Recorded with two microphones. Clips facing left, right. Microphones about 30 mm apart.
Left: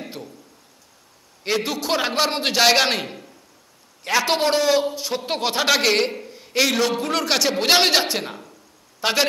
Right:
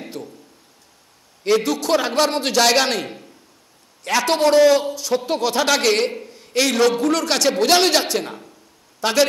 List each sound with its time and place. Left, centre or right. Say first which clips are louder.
0.2 s a man's voice: right 4 dB; left
1.7 s a man's voice: right 3 dB; centre
5.2 s a man's voice: right 3 dB; left
5.6 s a man's voice: even; centre
6.9 s a man's voice: right 3 dB; centre
7.5 s a man's voice: right 1 dB; left